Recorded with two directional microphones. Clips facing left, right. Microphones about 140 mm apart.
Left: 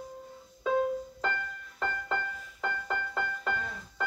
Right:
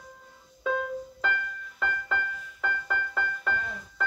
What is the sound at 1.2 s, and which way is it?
Music, 25° left (ahead or behind).